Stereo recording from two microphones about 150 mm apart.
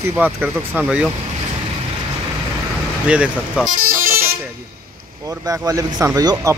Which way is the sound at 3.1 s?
10° right (ahead or behind).